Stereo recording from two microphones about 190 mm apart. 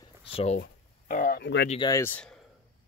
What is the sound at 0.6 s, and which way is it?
Speech, 45° left (ahead or behind).